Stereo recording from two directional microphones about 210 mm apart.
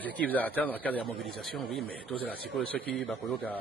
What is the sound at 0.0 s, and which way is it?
Speech, 5° left (ahead or behind).